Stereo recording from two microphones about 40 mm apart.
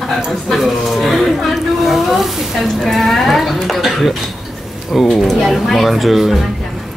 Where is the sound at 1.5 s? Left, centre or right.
Centre.